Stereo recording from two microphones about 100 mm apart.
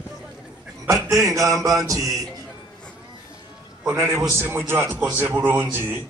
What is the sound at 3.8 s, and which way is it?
A man's voice, 25° right (ahead or behind).